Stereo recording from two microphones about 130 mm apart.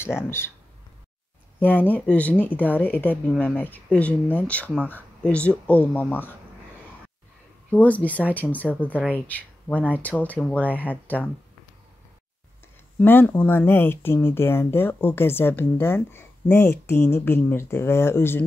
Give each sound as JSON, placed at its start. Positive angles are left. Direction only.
{"t": 0.0, "sound": "speech", "side_deg": 20}
{"t": 1.6, "sound": "speech", "side_deg": 15}
{"t": 7.7, "sound": "speech", "side_deg": 10}
{"t": 13.0, "sound": "speech", "side_deg": 15}